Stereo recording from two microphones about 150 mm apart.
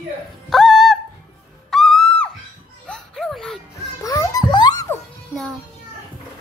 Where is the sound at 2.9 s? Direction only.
5° left (ahead or behind).